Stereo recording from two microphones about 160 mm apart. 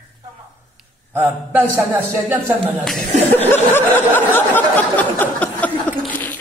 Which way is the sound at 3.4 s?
15° left (ahead or behind).